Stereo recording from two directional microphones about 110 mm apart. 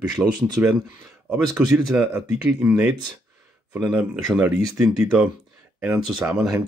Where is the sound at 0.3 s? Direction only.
40° right (ahead or behind).